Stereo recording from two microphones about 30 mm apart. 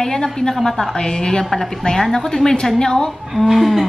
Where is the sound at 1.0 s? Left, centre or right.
Left.